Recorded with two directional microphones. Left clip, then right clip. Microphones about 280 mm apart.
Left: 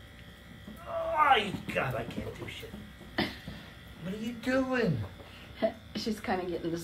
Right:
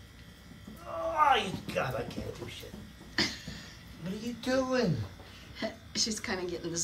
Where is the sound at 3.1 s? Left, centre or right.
Centre.